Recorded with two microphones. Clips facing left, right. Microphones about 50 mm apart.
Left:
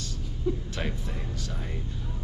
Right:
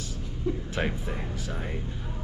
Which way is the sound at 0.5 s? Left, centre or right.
Centre.